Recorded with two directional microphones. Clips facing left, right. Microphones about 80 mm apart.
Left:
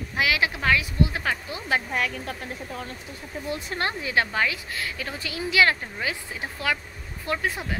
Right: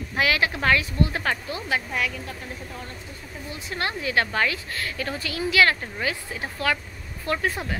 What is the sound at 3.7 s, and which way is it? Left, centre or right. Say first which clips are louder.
Speech: right 1 dB; left.